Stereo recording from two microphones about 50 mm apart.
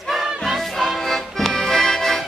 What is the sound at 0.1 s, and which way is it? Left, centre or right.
Music, centre.